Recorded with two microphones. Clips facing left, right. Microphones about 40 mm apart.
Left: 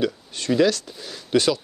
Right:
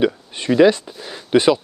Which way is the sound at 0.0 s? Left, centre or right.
Right.